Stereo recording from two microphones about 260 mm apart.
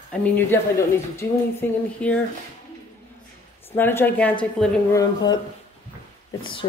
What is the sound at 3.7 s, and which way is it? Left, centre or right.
A woman's voice, centre.